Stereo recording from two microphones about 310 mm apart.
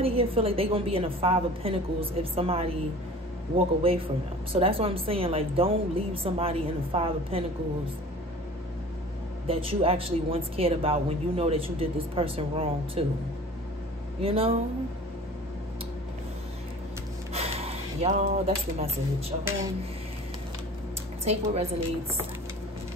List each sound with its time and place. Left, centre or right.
0.0 s a woman's voice: centre
9.5 s a woman's voice: centre
14.2 s a woman's voice: centre
17.3 s a woman's voice: centre
21.2 s a woman's voice: right